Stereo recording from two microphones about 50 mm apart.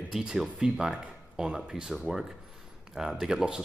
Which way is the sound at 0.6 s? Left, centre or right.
Centre.